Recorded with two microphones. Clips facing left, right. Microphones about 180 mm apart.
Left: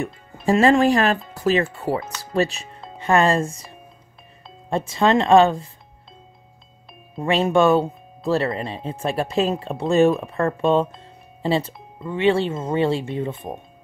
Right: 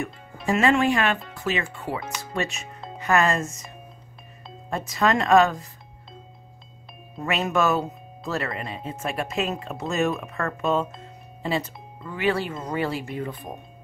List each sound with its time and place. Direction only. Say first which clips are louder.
0.0 s speech: left 5 dB; 35° left (ahead or behind)
7.2 s speech: left 6 dB; 30° left (ahead or behind)